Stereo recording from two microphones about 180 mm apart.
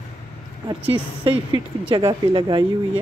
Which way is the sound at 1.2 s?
30° right (ahead or behind).